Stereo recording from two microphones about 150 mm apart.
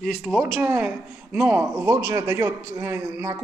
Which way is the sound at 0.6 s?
10° right (ahead or behind).